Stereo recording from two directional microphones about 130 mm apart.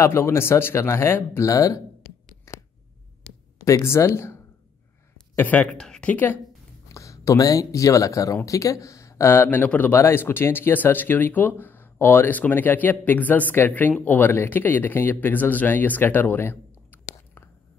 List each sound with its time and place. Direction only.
0.0 s speech: 20° left (ahead or behind)
2.5 s a sound: 20° left (ahead or behind)
3.6 s speech: 20° left (ahead or behind)